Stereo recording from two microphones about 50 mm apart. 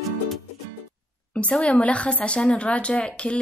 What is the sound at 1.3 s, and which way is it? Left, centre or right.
A woman's voice, left.